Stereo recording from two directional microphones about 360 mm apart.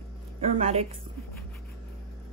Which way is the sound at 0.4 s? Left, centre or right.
Centre.